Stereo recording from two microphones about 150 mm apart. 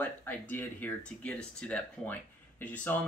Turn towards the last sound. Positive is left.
turn(degrees=10)  # may be behind; listen again after turning